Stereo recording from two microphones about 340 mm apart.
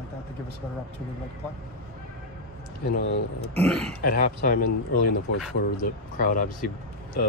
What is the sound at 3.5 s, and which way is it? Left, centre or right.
Speech, centre.